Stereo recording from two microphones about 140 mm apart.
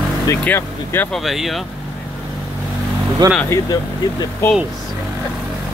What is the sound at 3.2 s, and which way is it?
Speech, 30° right (ahead or behind).